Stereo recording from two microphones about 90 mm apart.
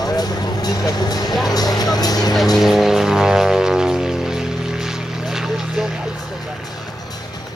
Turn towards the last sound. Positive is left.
turn(degrees=-5)  # may be behind; listen again after turning